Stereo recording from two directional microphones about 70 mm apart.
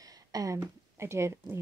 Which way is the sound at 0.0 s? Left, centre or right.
Right.